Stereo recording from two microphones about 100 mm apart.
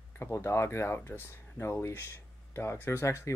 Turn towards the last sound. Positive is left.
turn(degrees=30)  # may be behind; listen again after turning